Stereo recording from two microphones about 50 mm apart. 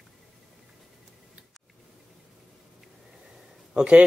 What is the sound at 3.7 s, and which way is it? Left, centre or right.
Speech, right.